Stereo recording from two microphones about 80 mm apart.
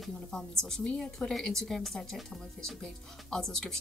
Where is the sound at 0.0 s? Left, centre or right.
Centre.